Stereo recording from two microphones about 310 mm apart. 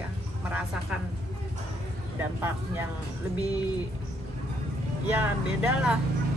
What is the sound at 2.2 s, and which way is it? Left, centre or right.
Speech, centre.